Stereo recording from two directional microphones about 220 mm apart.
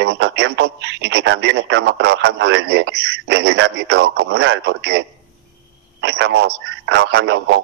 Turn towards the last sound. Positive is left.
turn(degrees=-50)  # may be behind; listen again after turning